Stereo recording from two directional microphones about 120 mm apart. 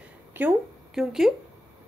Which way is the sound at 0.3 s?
15° right (ahead or behind).